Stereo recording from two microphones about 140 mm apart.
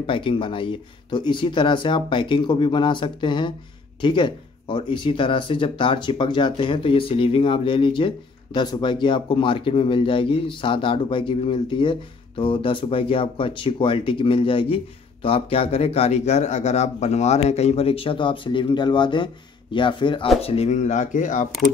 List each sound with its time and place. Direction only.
0.0 s speech: 40° left (ahead or behind)
20.4 s speech: 45° left (ahead or behind); by 21.5 s 65° left (ahead or behind)